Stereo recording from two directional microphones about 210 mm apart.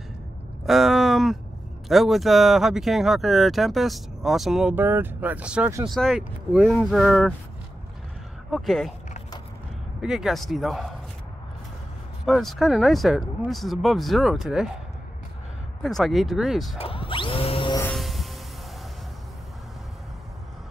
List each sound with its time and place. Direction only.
0.7 s a sound: centre (ahead or behind)
1.9 s speech: centre (ahead or behind)
5.9 s speech: centre (ahead or behind)
8.5 s speech: centre (ahead or behind)
10.0 s speech: centre (ahead or behind)
12.3 s speech: centre (ahead or behind)
15.8 s speech: centre (ahead or behind)
16.7 s a sound: 25° left (ahead or behind)
17.7 s vehicle: 5° left (ahead or behind)